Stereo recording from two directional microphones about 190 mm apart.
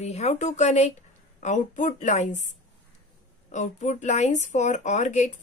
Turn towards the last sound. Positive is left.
turn(degrees=40)  # may be behind; listen again after turning